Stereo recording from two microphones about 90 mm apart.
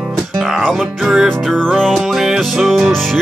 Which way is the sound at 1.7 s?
15° right (ahead or behind).